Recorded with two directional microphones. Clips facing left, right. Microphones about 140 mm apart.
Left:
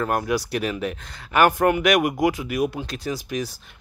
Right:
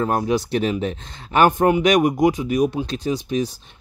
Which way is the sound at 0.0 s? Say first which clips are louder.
Right 3 dB; 20° right (ahead or behind).